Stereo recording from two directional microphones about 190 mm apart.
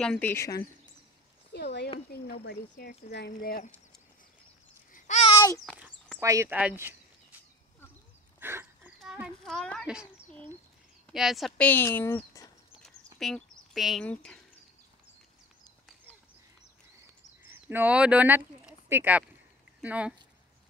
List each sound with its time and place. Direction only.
0.0 s speech: 5° left (ahead or behind)
1.5 s a sound: 60° left (ahead or behind)
2.1 s speech: 55° left (ahead or behind)
4.9 s babbling: 35° left (ahead or behind)
5.3 s a sound: 15° left (ahead or behind)
6.1 s speech: 15° right (ahead or behind)
8.4 s a sound: 10° right (ahead or behind)
9.0 s a child's voice: centre (ahead or behind)
17.4 s speech: 10° right (ahead or behind)